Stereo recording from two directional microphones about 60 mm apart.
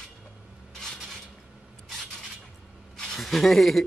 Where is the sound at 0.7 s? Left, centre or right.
Centre.